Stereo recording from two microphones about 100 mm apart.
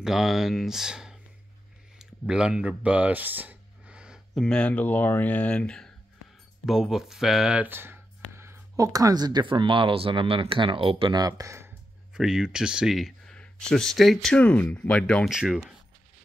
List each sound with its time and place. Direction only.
0.0 s speech: 5° right (ahead or behind)
2.0 s a sound: 5° right (ahead or behind)
4.4 s speech: 10° left (ahead or behind)
6.6 s speech: 5° right (ahead or behind); by 11.1 s 60° right (ahead or behind)
11.1 s speech: 40° right (ahead or behind)
12.1 s speech: 5° right (ahead or behind)
15.2 s speech: 5° right (ahead or behind)